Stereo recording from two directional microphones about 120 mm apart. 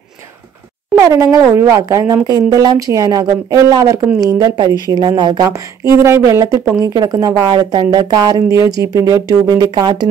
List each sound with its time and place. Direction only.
0.9 s speech: 25° right (ahead or behind)
6.0 s speech: 25° right (ahead or behind)